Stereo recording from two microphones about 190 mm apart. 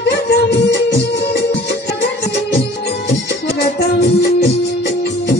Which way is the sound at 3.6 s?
55° left (ahead or behind).